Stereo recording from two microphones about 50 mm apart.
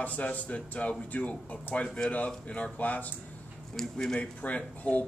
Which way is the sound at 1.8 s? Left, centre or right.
Centre.